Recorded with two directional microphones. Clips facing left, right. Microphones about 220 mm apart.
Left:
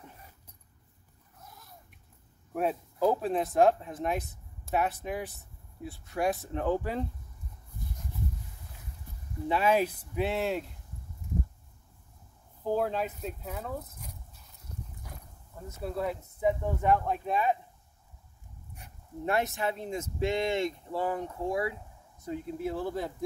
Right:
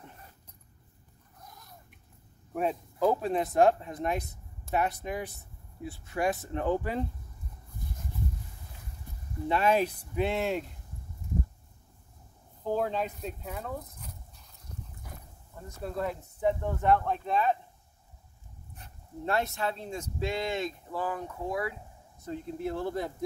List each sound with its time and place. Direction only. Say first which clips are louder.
1.4 s cat: even; 5° left (ahead or behind)
2.5 s speech: even; 5° left (ahead or behind)
9.5 s speech: even; 5° left (ahead or behind)
12.6 s speech: left 1 dB; 5° left (ahead or behind)
15.8 s speech: left 1 dB; 5° left (ahead or behind)
18.8 s speech: left 1 dB; 15° left (ahead or behind)
22.2 s speech: left 1 dB; 5° left (ahead or behind)